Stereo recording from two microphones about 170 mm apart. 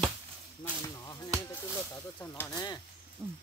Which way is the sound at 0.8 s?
20° left (ahead or behind).